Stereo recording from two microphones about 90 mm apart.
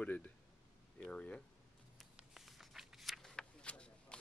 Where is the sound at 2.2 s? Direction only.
5° right (ahead or behind).